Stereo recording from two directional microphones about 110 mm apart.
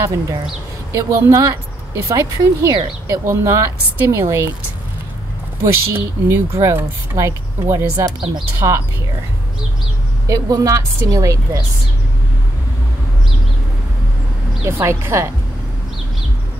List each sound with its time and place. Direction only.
0.0 s speech: 30° right (ahead or behind)
5.6 s speech: 20° right (ahead or behind)
8.6 s a woman's voice: 40° right (ahead or behind)
10.2 s a woman's voice: 30° right (ahead or behind)
14.6 s speech: 25° right (ahead or behind)